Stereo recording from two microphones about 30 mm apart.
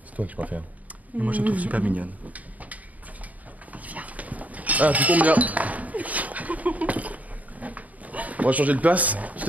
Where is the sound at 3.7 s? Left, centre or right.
Right.